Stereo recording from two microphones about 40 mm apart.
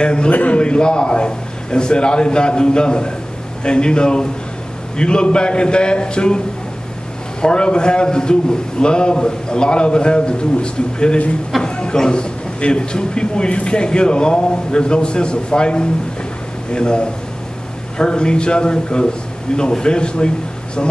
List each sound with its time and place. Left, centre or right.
0.0 s a man's voice: left
0.3 s a man's voice: left
0.6 s a man's voice: left
7.4 s a man's voice: left